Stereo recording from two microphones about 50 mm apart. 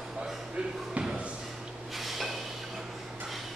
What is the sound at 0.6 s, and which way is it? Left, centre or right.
Slam, centre.